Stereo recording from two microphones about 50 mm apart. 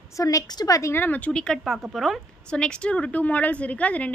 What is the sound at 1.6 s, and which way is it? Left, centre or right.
Speech, centre.